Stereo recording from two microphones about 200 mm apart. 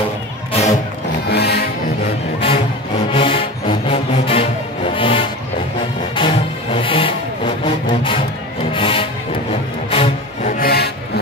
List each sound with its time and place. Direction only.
0.5 s music: 30° left (ahead or behind)
1.2 s music: 55° left (ahead or behind)
3.1 s music: 25° left (ahead or behind)
10.6 s music: 50° left (ahead or behind)